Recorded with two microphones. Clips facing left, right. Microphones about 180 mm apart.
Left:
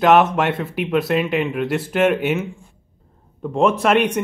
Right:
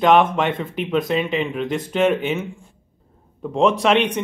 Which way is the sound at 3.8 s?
10° left (ahead or behind).